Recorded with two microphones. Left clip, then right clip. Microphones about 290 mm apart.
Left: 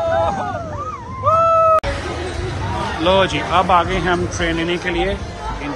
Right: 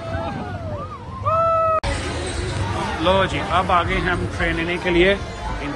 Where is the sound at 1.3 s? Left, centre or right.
Centre.